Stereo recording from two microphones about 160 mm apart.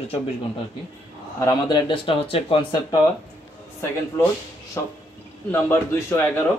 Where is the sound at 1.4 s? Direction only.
25° left (ahead or behind).